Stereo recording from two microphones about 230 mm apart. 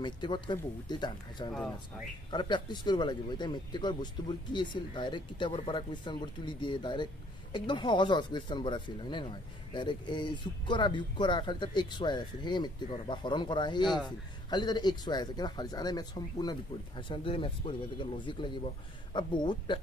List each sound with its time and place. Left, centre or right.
0.0 s speech: centre
1.5 s speech: centre
2.3 s speech: centre